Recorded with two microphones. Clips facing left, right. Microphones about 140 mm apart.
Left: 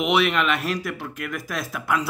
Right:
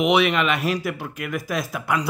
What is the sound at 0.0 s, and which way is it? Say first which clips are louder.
Speech: right 2 dB; centre (ahead or behind).